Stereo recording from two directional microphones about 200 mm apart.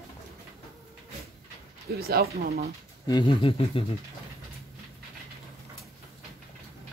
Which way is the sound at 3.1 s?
25° left (ahead or behind).